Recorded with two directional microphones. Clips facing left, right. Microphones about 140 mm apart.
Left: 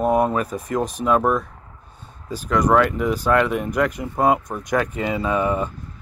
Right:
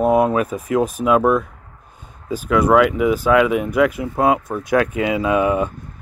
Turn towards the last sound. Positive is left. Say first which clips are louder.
# right 4 dB
turn(degrees=-10)  # may be behind; listen again after turning